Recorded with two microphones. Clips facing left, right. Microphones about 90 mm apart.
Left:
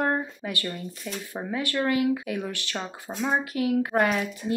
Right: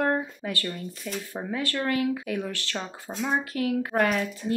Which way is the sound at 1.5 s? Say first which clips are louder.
Left 2 dB; 15° left (ahead or behind).